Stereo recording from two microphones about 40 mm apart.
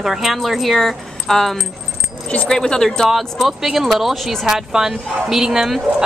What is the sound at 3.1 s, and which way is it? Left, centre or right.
A woman's voice, centre.